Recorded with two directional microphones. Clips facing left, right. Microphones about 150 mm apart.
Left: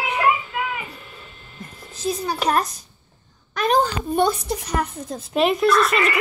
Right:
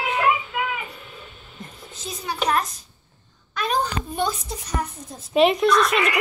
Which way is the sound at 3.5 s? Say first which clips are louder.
Left 5 dB; 50° left (ahead or behind).